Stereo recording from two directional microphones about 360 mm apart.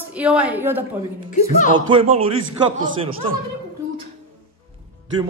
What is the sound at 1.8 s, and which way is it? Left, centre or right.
Speech, centre.